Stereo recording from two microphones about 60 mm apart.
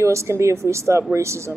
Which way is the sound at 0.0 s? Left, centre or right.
Right.